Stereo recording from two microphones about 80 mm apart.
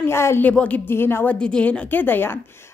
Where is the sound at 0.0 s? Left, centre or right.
Left.